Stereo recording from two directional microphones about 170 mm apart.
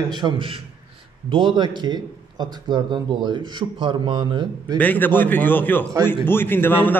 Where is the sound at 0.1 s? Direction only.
30° right (ahead or behind).